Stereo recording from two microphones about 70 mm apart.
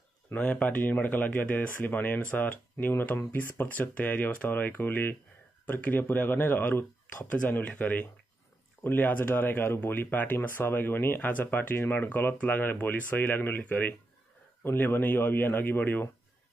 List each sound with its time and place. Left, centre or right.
0.3 s speech: centre